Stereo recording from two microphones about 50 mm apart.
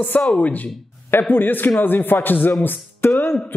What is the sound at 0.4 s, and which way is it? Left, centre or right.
Speech, left.